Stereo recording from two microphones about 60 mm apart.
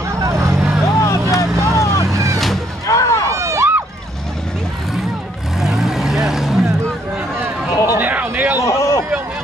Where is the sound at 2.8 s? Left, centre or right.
Left.